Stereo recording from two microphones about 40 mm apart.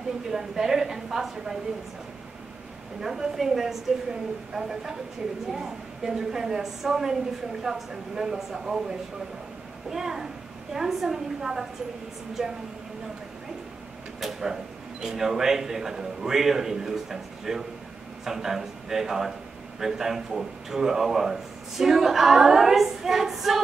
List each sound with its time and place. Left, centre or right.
0.3 s speech: centre
3.0 s a woman's voice: centre
14.2 s speech: centre